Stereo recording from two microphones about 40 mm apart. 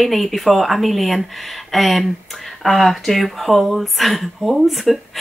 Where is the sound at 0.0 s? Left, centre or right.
Centre.